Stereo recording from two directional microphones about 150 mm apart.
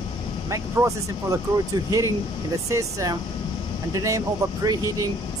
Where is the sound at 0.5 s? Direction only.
20° right (ahead or behind).